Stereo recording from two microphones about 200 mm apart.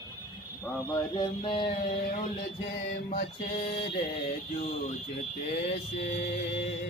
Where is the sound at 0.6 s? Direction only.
20° left (ahead or behind).